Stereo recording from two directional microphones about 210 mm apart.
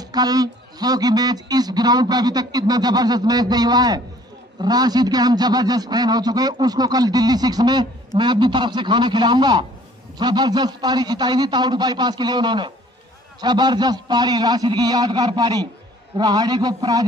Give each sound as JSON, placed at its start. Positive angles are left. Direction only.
{"t": 0.0, "sound": "a man's voice", "side_deg": -20}